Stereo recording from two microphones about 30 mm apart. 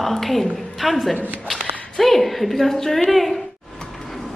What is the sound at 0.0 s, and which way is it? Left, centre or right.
A woman's voice, centre.